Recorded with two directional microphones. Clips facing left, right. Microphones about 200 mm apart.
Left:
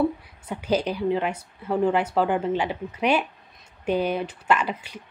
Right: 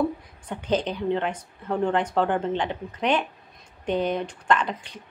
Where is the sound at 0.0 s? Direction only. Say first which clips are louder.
Left 2 dB; 10° left (ahead or behind).